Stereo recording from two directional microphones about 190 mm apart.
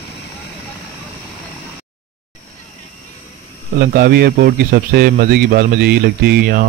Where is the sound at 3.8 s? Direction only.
50° right (ahead or behind).